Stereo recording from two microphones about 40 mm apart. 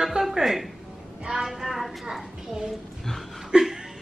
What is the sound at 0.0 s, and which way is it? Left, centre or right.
Music, centre.